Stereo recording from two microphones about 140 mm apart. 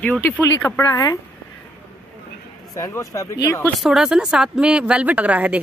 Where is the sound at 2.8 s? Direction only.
25° left (ahead or behind).